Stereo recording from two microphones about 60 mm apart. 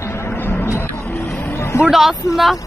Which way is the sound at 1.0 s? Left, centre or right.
Left.